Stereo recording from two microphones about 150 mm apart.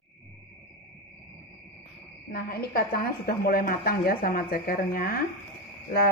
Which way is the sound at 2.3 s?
85° left.